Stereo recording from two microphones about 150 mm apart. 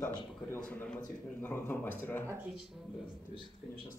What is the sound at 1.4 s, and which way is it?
Speech, 15° left (ahead or behind).